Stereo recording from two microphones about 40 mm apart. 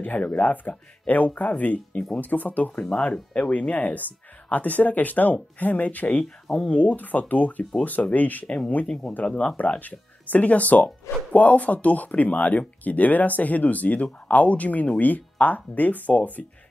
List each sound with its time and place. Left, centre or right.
0.2 s speech: left
0.5 s speech: left
6.2 s speech: centre
6.7 s speech: left
8.8 s speech: left
9.6 s speech: left